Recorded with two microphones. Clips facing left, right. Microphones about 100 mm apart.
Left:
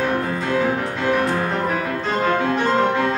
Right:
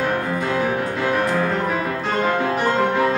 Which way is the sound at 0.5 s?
10° right (ahead or behind).